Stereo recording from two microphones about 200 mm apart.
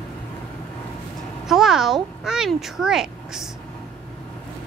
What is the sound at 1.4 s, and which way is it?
A child's voice, centre (ahead or behind).